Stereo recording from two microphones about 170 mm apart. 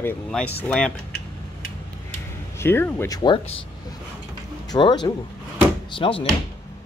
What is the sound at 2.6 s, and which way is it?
Speech, 15° left (ahead or behind).